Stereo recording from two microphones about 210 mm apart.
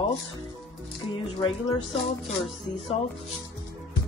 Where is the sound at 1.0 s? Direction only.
25° left (ahead or behind).